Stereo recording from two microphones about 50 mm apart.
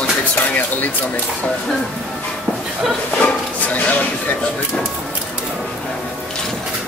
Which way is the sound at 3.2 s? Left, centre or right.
Left.